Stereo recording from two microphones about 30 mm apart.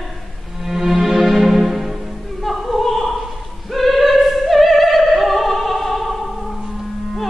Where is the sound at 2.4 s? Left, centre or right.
Centre.